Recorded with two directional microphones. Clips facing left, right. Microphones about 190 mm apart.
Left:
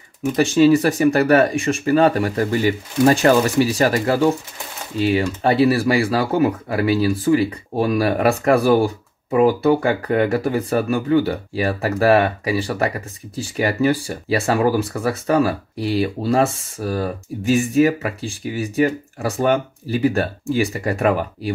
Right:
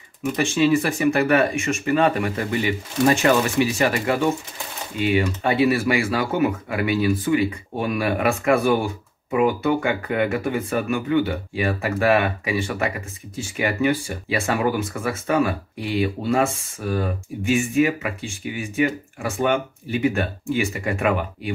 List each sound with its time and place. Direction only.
0.4 s speech: 35° left (ahead or behind)